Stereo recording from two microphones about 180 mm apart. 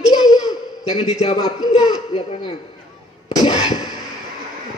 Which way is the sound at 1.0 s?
35° left (ahead or behind).